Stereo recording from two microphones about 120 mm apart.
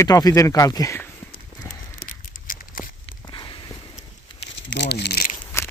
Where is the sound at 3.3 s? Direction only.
45° left (ahead or behind).